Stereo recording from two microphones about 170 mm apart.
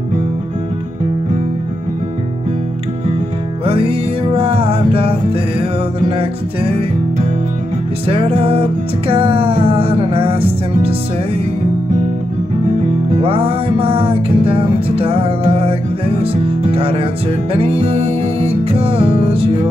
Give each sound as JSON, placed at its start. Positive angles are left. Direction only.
{"t": 3.6, "sound": "music", "side_deg": -35}
{"t": 8.1, "sound": "music", "side_deg": -35}
{"t": 13.2, "sound": "music", "side_deg": -35}